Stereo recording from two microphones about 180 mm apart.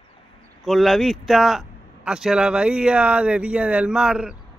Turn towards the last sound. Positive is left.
turn(degrees=-5)  # may be behind; listen again after turning